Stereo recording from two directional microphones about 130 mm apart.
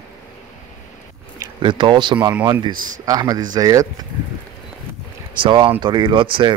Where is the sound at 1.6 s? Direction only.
40° right (ahead or behind).